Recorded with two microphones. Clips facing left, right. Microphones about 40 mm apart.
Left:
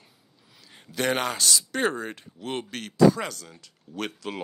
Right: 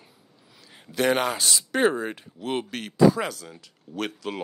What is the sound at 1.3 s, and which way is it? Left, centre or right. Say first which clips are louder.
Speech: right 1 dB; centre.